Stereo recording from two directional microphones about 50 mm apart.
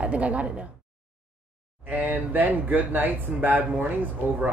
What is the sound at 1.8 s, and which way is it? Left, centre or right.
Speech, right.